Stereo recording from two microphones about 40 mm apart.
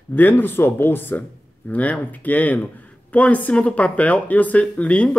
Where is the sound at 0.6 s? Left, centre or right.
Left.